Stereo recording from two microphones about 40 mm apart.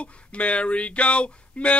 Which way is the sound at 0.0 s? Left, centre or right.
Left.